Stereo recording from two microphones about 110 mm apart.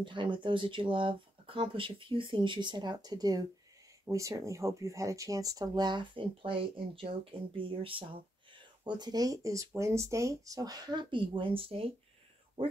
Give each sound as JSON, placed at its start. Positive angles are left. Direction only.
{"t": 0.0, "sound": "speech", "side_deg": -45}